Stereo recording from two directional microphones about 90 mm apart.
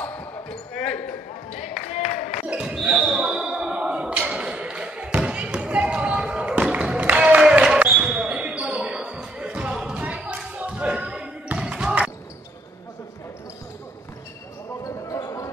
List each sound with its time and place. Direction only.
0.0 s basketball bounce: 15° left (ahead or behind)
2.4 s basketball bounce: 10° right (ahead or behind)
14.8 s basketball bounce: 40° left (ahead or behind)